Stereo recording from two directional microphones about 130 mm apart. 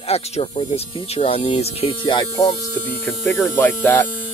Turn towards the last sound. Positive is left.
turn(degrees=15)  # may be behind; listen again after turning